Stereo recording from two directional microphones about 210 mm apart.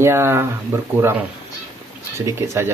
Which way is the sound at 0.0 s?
10° right (ahead or behind).